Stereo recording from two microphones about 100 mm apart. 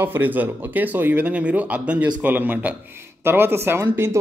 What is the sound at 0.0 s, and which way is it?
Speech, 20° right (ahead or behind).